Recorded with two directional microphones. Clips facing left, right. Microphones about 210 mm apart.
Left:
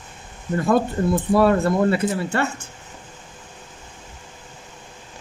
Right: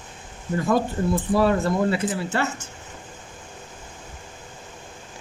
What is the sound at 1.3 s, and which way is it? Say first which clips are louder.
Speech: left 3 dB; 60° left (ahead or behind).